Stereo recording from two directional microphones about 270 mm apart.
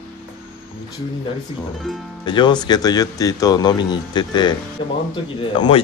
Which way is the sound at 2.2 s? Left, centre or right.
Centre.